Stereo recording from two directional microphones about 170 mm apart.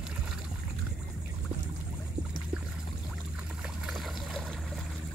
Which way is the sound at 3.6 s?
Centre (ahead or behind).